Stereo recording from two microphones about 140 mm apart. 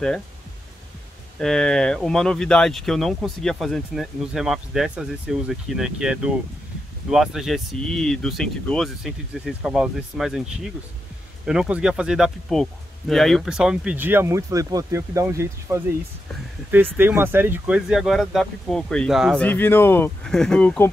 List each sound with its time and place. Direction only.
1.4 s speech: 5° left (ahead or behind)
11.4 s speech: 5° right (ahead or behind)
16.9 s speech: 15° right (ahead or behind)
19.4 s speech: 15° left (ahead or behind)
20.2 s speech: 5° left (ahead or behind)